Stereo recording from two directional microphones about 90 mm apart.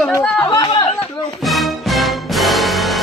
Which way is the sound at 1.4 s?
Centre (ahead or behind).